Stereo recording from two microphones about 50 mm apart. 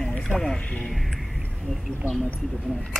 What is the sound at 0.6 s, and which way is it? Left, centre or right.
Speech, left.